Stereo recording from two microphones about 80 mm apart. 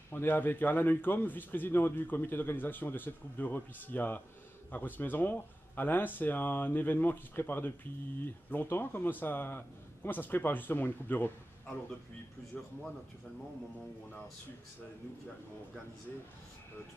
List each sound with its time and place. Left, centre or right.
0.1 s speech: left